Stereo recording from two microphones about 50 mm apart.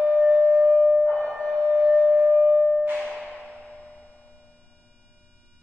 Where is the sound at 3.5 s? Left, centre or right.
Centre.